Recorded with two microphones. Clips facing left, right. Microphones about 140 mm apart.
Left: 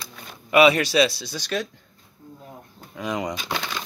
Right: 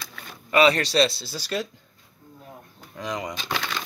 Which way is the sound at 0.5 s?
10° left (ahead or behind).